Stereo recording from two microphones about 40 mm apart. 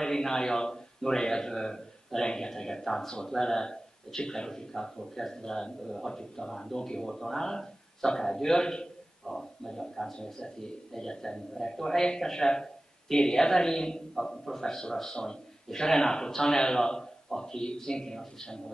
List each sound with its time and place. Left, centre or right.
0.0 s a man's voice: centre